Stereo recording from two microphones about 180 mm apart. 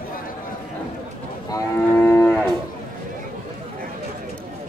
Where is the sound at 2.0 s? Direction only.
10° left (ahead or behind).